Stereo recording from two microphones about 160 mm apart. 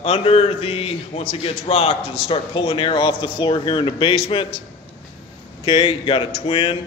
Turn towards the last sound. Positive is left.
turn(degrees=35)  # may be behind; listen again after turning